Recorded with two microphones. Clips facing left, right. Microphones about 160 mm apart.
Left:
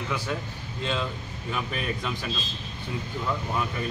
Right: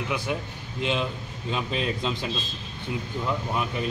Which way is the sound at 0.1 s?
15° right (ahead or behind).